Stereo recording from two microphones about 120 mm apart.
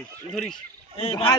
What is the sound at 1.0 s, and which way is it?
Speech, 55° left (ahead or behind).